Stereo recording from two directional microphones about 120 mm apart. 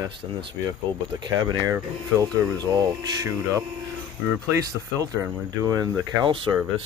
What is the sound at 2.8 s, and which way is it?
Speech, 35° right (ahead or behind).